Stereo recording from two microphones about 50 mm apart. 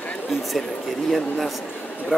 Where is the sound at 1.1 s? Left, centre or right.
Centre.